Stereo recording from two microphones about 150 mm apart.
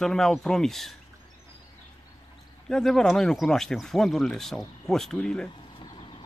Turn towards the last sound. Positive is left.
turn(degrees=35)  # may be behind; listen again after turning